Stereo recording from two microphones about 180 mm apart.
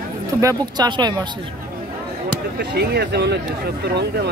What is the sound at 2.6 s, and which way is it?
Speech, 65° right (ahead or behind).